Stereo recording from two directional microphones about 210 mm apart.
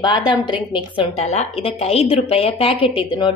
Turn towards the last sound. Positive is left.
turn(degrees=25)  # may be behind; listen again after turning